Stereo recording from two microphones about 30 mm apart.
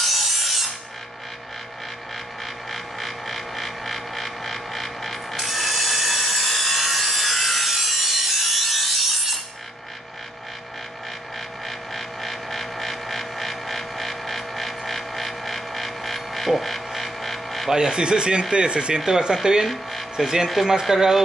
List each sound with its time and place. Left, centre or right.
0.0 s wood: centre
2.7 s music: centre
11.6 s vehicle: centre
17.6 s speech: right
18.9 s speech: right
19.7 s a sound: centre
20.6 s speech: centre